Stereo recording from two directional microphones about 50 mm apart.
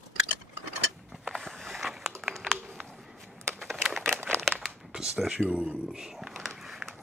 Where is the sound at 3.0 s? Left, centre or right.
Centre.